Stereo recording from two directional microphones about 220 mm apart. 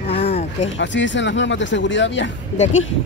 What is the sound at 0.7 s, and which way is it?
Speech, 55° left (ahead or behind).